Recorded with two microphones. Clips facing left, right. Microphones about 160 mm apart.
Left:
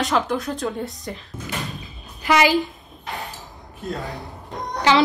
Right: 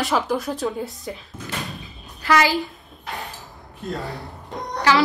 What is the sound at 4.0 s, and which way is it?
A woman's voice, 20° left (ahead or behind).